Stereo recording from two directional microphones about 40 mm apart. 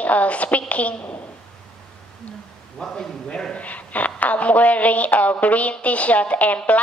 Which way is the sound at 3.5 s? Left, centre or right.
Left.